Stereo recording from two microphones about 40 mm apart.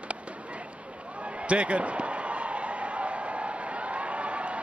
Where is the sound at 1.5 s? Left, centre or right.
Right.